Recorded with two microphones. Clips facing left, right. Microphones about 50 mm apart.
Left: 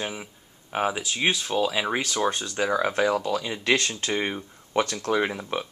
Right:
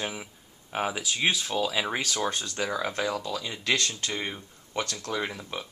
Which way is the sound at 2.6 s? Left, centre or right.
Left.